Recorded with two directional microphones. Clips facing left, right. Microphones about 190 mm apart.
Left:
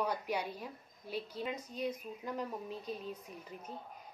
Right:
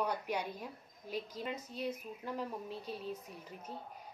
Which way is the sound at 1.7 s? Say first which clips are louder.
Left 4 dB; 40° left (ahead or behind).